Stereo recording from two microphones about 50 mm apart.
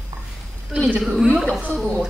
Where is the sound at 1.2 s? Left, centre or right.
Centre.